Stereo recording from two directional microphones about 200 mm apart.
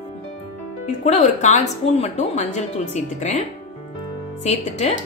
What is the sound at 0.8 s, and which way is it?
Speech, 35° left (ahead or behind).